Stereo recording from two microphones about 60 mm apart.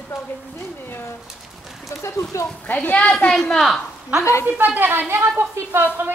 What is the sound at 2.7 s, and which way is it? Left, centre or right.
Speech, left.